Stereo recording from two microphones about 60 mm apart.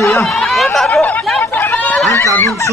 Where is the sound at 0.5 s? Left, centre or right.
Centre.